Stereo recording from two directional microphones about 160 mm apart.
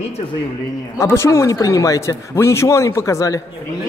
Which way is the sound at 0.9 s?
15° left (ahead or behind).